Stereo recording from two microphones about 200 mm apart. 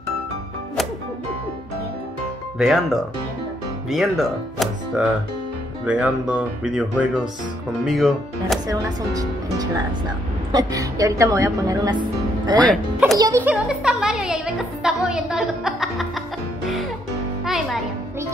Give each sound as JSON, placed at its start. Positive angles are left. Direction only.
{"t": 2.6, "sound": "speech", "side_deg": 0}
{"t": 8.6, "sound": "a woman's voice", "side_deg": -20}
{"t": 17.5, "sound": "music", "side_deg": 0}